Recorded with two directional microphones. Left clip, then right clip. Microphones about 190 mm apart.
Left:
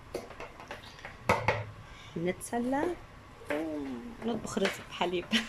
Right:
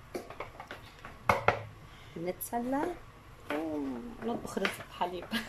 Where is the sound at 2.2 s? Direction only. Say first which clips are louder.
Left 2 dB; centre (ahead or behind).